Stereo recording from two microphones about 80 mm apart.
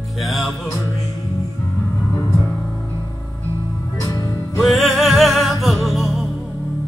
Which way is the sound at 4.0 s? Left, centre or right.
Left.